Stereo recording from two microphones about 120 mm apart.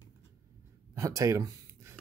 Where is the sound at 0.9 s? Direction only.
25° right (ahead or behind).